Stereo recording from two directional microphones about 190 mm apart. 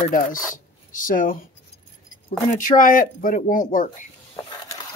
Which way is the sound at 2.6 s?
45° left (ahead or behind).